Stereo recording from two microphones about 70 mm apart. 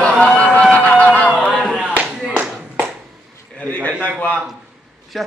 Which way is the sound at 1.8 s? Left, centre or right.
Centre.